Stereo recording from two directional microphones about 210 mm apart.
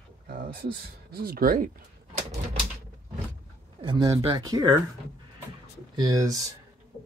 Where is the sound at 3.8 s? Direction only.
20° right (ahead or behind).